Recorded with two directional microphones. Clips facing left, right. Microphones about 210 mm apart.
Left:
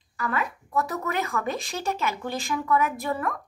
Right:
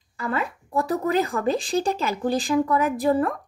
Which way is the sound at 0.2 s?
30° right (ahead or behind).